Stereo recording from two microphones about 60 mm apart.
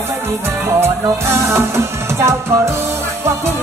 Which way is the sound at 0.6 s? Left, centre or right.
Right.